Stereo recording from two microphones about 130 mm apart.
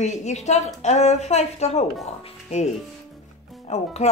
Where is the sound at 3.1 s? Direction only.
Centre (ahead or behind).